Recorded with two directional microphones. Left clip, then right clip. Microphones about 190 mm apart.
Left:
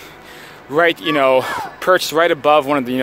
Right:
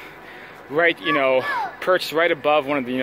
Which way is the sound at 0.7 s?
20° left (ahead or behind).